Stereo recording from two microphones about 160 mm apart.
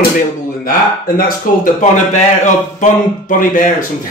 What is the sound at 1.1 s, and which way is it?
Speech, 55° left (ahead or behind).